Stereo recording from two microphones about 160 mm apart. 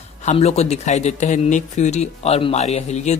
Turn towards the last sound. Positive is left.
turn(degrees=45)  # may be behind; listen again after turning